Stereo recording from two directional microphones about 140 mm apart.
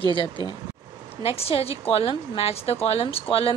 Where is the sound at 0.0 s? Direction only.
35° left (ahead or behind).